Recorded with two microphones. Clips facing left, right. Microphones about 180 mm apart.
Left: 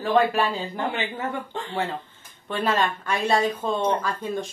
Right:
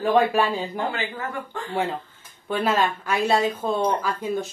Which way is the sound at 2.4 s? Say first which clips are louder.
Right 2 dB; 5° right (ahead or behind).